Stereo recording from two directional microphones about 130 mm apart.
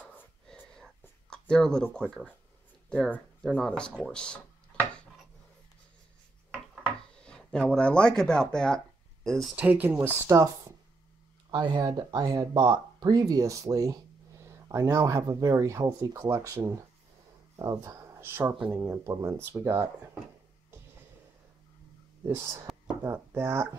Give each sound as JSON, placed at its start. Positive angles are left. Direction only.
{"t": 0.5, "sound": "whispering", "side_deg": 5}
{"t": 1.3, "sound": "speech", "side_deg": 5}
{"t": 4.0, "sound": "a sound", "side_deg": 5}
{"t": 7.2, "sound": "speech", "side_deg": 5}
{"t": 9.6, "sound": "speech", "side_deg": -15}
{"t": 11.5, "sound": "speech", "side_deg": -30}
{"t": 22.2, "sound": "speech", "side_deg": -20}